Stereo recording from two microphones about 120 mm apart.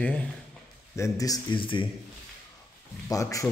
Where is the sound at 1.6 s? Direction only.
45° left (ahead or behind).